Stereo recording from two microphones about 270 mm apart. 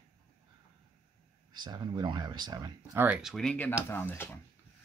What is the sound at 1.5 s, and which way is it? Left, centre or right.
Speech, centre.